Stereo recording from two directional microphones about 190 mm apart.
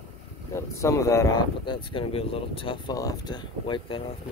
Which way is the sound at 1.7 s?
30° left (ahead or behind).